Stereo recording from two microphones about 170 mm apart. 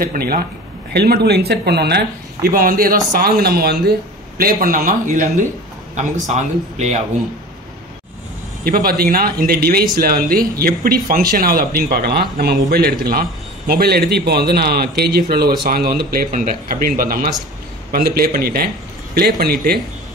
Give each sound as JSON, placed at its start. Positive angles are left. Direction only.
{"t": 0.0, "sound": "a man's voice", "side_deg": -60}
{"t": 8.6, "sound": "a man's voice", "side_deg": -60}